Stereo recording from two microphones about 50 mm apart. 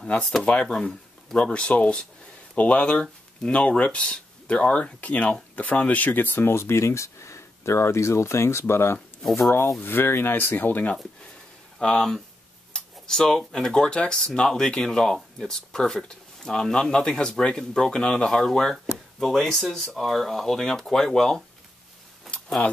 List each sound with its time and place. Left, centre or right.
0.5 s speech: centre
1.4 s speech: left
9.8 s speech: left
11.8 s speech: centre
12.7 s tick-tock: centre
13.4 s speech: centre
22.3 s a sound: centre